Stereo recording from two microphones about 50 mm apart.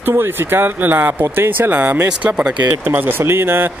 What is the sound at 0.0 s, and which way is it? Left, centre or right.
Speech, right.